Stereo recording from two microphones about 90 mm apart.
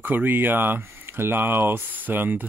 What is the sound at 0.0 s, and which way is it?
Speech, 20° right (ahead or behind).